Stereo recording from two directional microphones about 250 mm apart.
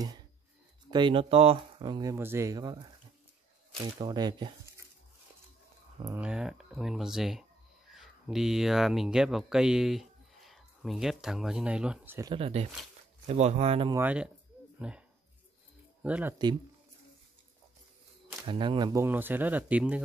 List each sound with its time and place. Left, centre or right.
0.8 s speech: centre
4.0 s speech: centre
6.0 s speech: centre; by 13.9 s right
13.9 s speech: centre
14.8 s insect: centre
16.0 s speech: centre
18.5 s speech: centre